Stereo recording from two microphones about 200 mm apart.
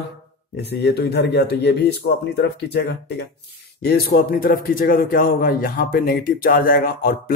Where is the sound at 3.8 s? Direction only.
50° left (ahead or behind).